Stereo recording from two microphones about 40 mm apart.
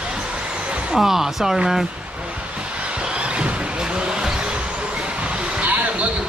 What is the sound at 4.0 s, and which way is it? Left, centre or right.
Basketball bounce, centre.